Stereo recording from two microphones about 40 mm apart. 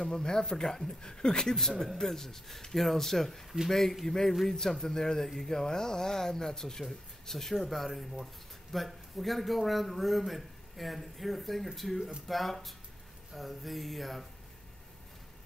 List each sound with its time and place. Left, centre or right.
0.0 s a man's voice: centre